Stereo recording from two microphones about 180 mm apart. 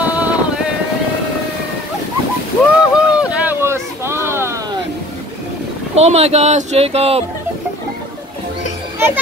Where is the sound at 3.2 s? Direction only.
5° right (ahead or behind).